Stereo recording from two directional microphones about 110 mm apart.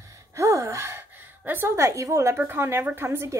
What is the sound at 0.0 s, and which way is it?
A woman's voice, 30° right (ahead or behind).